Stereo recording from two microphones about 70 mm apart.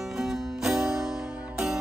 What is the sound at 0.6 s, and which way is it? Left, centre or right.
Music, centre.